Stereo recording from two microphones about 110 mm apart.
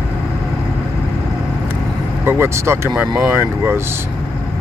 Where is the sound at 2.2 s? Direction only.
20° right (ahead or behind).